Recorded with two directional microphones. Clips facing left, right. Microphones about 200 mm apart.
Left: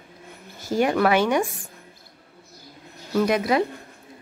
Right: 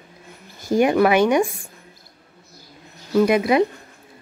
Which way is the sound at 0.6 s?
15° right (ahead or behind).